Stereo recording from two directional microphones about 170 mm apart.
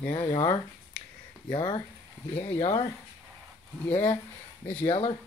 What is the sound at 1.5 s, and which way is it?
Speech, 25° left (ahead or behind).